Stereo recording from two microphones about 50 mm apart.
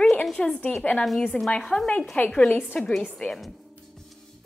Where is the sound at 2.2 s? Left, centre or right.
Left.